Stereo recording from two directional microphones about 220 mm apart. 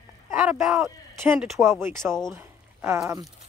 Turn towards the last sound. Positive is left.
turn(degrees=-15)  # may be behind; listen again after turning